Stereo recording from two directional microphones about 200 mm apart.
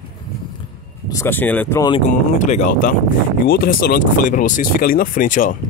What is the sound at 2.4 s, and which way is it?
Speech, 35° left (ahead or behind).